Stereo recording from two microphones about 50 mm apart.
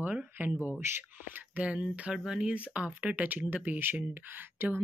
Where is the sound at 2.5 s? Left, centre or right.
Right.